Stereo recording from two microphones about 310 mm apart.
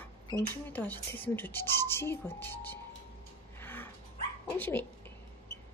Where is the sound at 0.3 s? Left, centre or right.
Centre.